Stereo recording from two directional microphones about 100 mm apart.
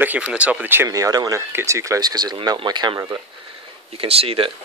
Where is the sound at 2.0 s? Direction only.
45° right (ahead or behind).